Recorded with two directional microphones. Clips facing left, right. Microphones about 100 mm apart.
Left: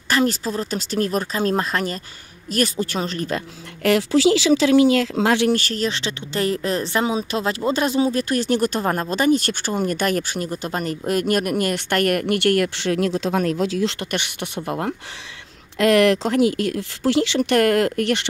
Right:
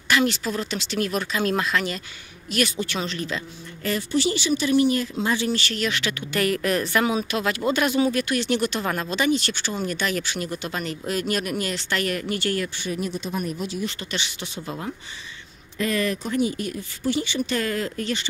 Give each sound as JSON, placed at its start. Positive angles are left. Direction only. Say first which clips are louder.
{"t": 0.1, "sound": "speech", "louder": "left 2 dB", "side_deg": 40}
{"t": 3.8, "sound": "speech", "louder": "left 7 dB", "side_deg": 90}
{"t": 5.5, "sound": "speech", "louder": "left 4 dB", "side_deg": 40}
{"t": 14.1, "sound": "speech", "louder": "left 5 dB", "side_deg": 60}
{"t": 15.8, "sound": "speech", "louder": "left 9 dB", "side_deg": 80}